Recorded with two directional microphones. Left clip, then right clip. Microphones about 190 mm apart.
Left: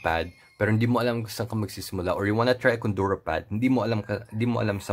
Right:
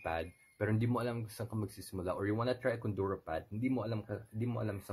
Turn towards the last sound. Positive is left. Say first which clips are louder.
# left 13 dB
turn(degrees=25)  # may be behind; listen again after turning